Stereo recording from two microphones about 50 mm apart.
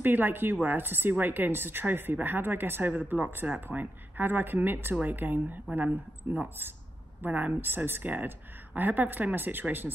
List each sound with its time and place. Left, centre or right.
0.0 s speech: right
7.6 s speech: right